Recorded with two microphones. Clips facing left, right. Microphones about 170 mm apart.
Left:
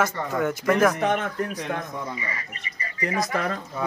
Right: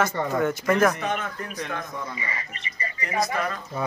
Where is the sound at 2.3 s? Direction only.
25° right (ahead or behind).